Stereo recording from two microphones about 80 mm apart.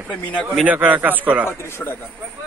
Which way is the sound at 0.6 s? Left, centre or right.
Centre.